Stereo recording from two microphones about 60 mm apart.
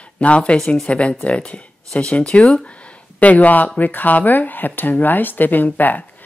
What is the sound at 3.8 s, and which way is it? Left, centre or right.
Speech, left.